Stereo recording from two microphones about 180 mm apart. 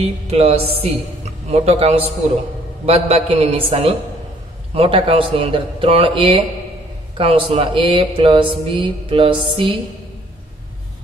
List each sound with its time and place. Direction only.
0.0 s a man's voice: 35° right (ahead or behind)
4.7 s a man's voice: 30° right (ahead or behind)